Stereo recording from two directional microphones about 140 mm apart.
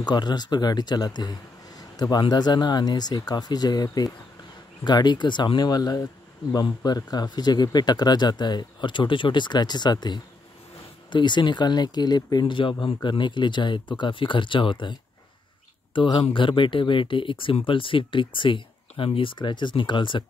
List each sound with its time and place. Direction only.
0.1 s speech: 30° left (ahead or behind)